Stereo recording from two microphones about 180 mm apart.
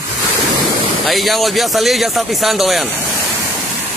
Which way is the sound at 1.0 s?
Centre (ahead or behind).